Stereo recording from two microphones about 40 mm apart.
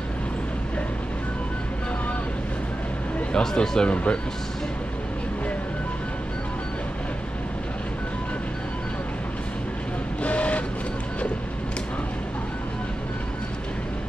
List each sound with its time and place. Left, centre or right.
3.3 s speech: centre
3.9 s speech: left
10.2 s vehicle: left